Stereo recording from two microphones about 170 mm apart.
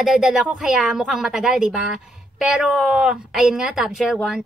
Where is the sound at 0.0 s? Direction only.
5° right (ahead or behind).